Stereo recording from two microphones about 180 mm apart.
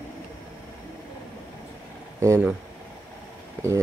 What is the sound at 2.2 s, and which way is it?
Speech, 15° right (ahead or behind).